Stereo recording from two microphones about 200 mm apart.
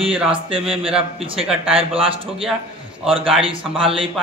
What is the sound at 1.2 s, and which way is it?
A man's voice, 30° right (ahead or behind).